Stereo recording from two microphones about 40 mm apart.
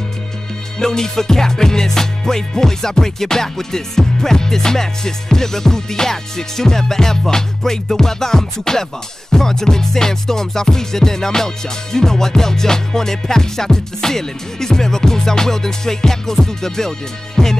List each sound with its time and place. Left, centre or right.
0.7 s music: centre